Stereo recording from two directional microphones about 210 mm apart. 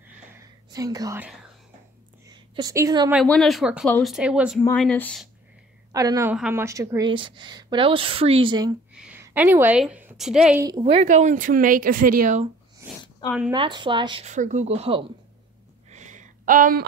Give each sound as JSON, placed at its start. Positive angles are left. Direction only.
{"t": 0.7, "sound": "speech", "side_deg": -15}
{"t": 2.2, "sound": "a sound", "side_deg": -15}
{"t": 3.3, "sound": "speech", "side_deg": 0}
{"t": 4.6, "sound": "speech", "side_deg": 5}
{"t": 5.9, "sound": "a woman's voice", "side_deg": -15}
{"t": 8.9, "sound": "a woman's voice", "side_deg": -5}
{"t": 10.8, "sound": "speech", "side_deg": -30}
{"t": 12.8, "sound": "a sound", "side_deg": -10}
{"t": 13.5, "sound": "a woman's voice", "side_deg": -20}
{"t": 15.9, "sound": "a sound", "side_deg": -35}